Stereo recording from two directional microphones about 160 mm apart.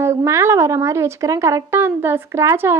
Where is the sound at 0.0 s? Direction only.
15° right (ahead or behind).